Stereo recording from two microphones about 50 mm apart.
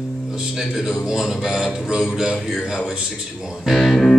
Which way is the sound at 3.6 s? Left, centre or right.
Centre.